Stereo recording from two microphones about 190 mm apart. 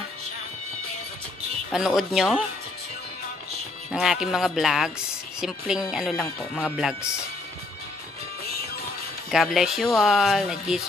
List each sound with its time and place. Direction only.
1.7 s speech: 5° right (ahead or behind)
3.9 s speech: 5° right (ahead or behind)
9.3 s speech: centre (ahead or behind)